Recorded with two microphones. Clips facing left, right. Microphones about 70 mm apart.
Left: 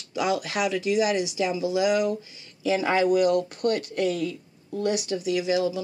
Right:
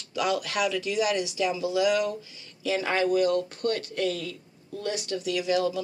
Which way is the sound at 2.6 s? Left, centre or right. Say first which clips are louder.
Left 3 dB; left.